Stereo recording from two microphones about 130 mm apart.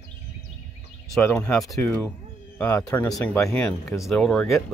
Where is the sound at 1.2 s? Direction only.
10° left (ahead or behind).